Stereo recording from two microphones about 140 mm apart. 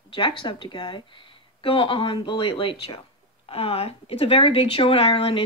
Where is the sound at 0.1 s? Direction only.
35° left (ahead or behind).